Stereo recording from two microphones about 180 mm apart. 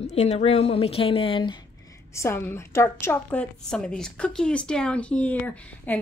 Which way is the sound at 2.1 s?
15° left (ahead or behind).